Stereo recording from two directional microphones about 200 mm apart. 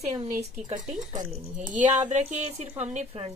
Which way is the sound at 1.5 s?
40° right (ahead or behind).